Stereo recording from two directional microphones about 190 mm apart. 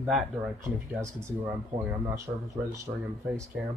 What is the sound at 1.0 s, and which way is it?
Speech, 15° right (ahead or behind).